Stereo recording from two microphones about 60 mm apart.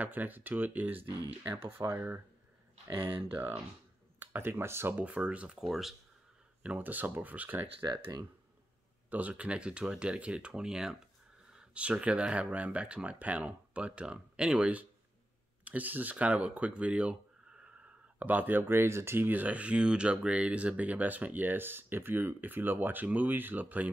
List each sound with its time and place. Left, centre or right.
0.0 s speech: right
1.6 s speech: right
4.9 s speech: right
5.6 s speech: centre
6.6 s speech: right
7.8 s speech: right
9.3 s speech: centre
15.6 s speech: right
18.2 s speech: right
19.2 s speech: right